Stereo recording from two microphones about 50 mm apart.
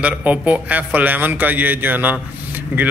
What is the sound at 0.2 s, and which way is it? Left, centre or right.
Speech, right.